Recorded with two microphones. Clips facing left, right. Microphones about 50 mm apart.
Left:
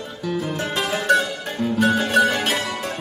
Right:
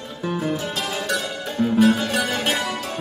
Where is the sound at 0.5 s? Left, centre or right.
Left.